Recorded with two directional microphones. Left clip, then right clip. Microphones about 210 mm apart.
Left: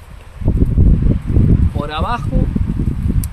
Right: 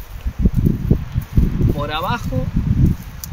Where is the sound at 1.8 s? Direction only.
15° left (ahead or behind).